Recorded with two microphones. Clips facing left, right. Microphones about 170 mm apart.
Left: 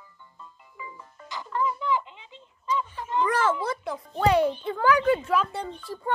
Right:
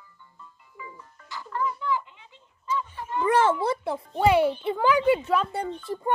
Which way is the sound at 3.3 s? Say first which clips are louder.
Right 8 dB; 25° right (ahead or behind).